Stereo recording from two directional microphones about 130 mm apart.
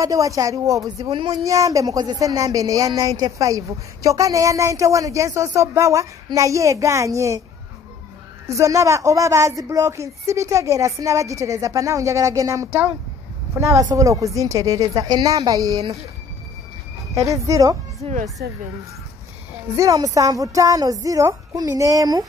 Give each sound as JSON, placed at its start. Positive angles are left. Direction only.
{"t": 0.0, "sound": "speech", "side_deg": -25}
{"t": 8.5, "sound": "speech", "side_deg": -25}
{"t": 17.1, "sound": "speech", "side_deg": -25}
{"t": 18.0, "sound": "speech", "side_deg": -45}
{"t": 19.7, "sound": "speech", "side_deg": -25}